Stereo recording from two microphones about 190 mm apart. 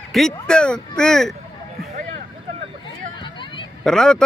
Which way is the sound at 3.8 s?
5° left (ahead or behind).